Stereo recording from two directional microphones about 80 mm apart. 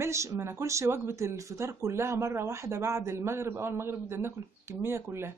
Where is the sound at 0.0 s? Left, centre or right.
Right.